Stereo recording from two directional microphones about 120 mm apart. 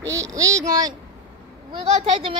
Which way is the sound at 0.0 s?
25° right (ahead or behind).